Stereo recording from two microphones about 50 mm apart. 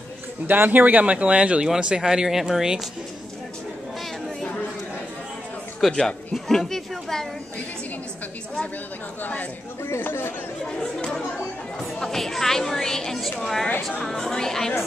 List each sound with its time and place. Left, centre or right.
0.5 s speech: right; by 2.9 s centre
5.8 s a woman's voice: centre
9.2 s speech: left
9.8 s speech: left
12.0 s a woman's voice: centre